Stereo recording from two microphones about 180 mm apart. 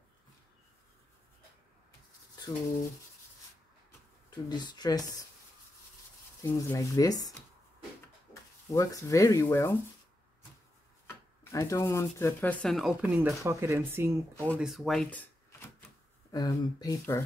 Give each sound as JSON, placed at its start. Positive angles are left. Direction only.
{"t": 4.5, "sound": "speech", "side_deg": 25}
{"t": 6.4, "sound": "speech", "side_deg": 15}
{"t": 8.7, "sound": "speech", "side_deg": 20}
{"t": 11.1, "sound": "speech", "side_deg": 20}
{"t": 14.6, "sound": "speech", "side_deg": 0}
{"t": 16.3, "sound": "speech", "side_deg": 20}